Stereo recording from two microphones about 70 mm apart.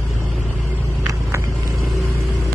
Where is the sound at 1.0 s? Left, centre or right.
Right.